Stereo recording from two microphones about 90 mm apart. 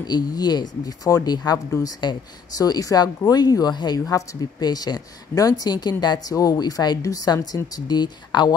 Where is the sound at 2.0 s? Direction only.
50° left (ahead or behind).